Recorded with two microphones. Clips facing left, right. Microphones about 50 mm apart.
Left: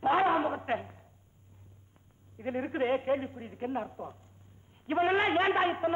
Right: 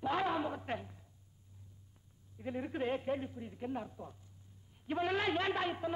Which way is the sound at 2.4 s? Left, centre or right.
Left.